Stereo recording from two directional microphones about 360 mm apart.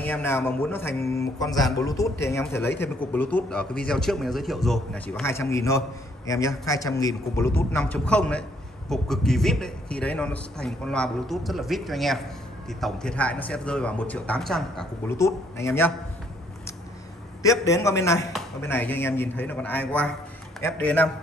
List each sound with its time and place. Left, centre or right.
0.0 s a man's voice: centre
17.4 s a man's voice: centre